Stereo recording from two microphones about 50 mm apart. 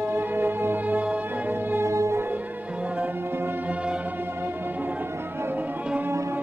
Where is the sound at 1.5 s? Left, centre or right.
Right.